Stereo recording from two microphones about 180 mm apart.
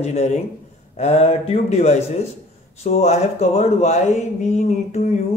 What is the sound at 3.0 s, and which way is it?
A man's voice, 40° left (ahead or behind).